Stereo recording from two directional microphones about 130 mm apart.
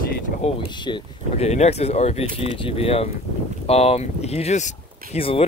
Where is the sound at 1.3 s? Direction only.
55° left (ahead or behind).